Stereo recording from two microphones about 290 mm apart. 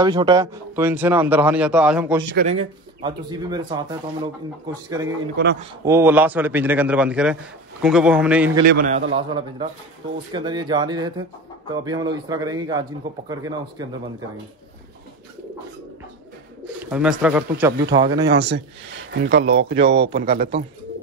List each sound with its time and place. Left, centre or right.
0.0 s a man's voice: centre
2.3 s a man's voice: right; by 8.5 s centre
8.6 s a man's voice: right
9.1 s a man's voice: centre
16.8 s a man's voice: centre
18.3 s speech: right